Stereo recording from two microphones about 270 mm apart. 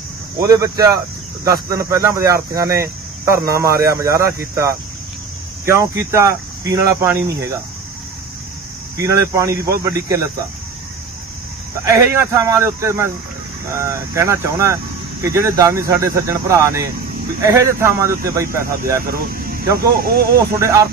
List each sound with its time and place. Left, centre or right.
0.4 s speech: centre
5.7 s speech: centre
8.9 s speech: centre
11.8 s speech: centre
19.0 s speech: right
20.3 s speech: centre